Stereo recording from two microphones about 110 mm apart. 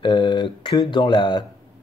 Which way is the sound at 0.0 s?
50° left (ahead or behind).